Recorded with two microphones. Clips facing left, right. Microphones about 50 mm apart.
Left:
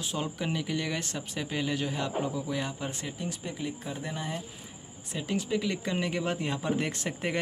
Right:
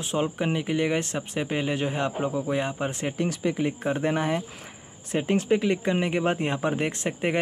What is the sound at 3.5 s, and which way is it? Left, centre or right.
Speech, right.